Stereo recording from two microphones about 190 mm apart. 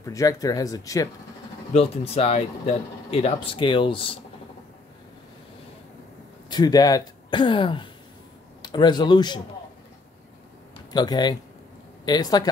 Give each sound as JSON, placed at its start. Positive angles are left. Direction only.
{"t": 0.0, "sound": "speech", "side_deg": 15}
{"t": 1.7, "sound": "speech", "side_deg": 30}
{"t": 6.5, "sound": "speech", "side_deg": 20}
{"t": 10.9, "sound": "speech", "side_deg": 20}